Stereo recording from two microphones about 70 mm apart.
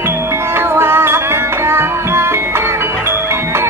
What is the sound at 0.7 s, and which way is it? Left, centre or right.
Music, right.